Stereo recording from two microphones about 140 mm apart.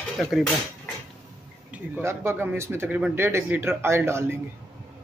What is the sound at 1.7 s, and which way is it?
Speech, 15° right (ahead or behind).